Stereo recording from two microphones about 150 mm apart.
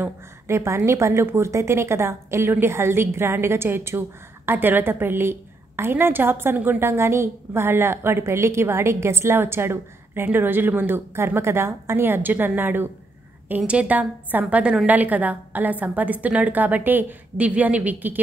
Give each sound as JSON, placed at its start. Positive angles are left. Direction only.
{"t": 0.0, "sound": "a woman's voice", "side_deg": -20}